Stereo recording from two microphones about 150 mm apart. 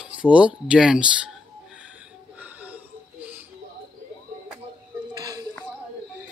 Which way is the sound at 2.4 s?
10° right (ahead or behind).